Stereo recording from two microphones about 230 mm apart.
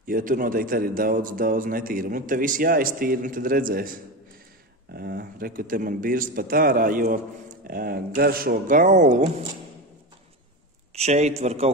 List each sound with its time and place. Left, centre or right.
0.0 s a man's voice: right
4.9 s a man's voice: right
11.0 s speech: right